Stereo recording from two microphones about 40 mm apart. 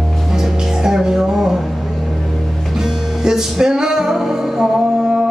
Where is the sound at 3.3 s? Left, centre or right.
Centre.